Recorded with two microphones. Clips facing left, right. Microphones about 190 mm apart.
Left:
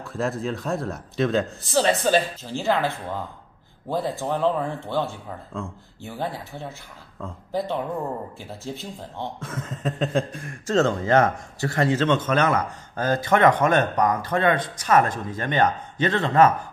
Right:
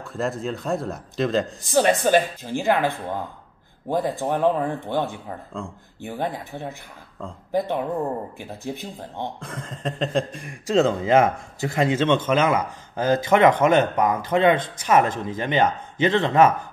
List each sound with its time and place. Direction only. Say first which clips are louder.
0.0 s a man's voice: even; centre (ahead or behind)
1.6 s a man's voice: right 4 dB; 15° right (ahead or behind)
9.4 s a man's voice: left 1 dB; 5° left (ahead or behind)
10.8 s a man's voice: right 2 dB; 15° right (ahead or behind)
14.3 s a man's voice: right 3 dB; 20° right (ahead or behind)